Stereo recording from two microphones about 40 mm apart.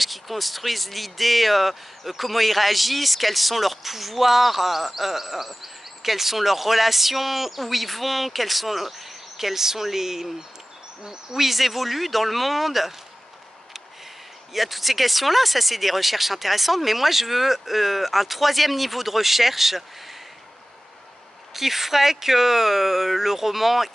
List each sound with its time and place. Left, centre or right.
0.0 s speech: centre
11.4 s speech: centre
14.5 s speech: centre
21.5 s speech: centre